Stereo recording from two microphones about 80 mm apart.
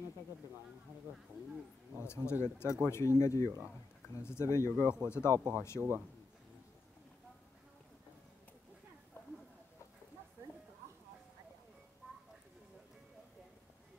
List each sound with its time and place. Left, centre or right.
2.0 s speech: left
5.3 s speech: right